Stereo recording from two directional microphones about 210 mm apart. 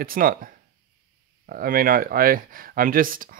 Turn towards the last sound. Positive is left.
turn(degrees=-40)  # may be behind; listen again after turning